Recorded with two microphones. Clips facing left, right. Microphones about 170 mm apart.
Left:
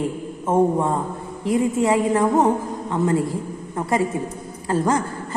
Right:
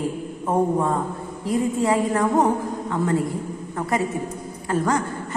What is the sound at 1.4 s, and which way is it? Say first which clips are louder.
A woman's voice: left 2 dB; 25° left (ahead or behind).